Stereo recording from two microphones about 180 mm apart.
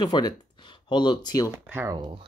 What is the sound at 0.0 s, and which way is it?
Speech, 25° left (ahead or behind).